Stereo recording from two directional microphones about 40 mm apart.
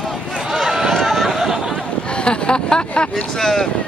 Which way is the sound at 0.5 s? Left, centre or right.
Centre.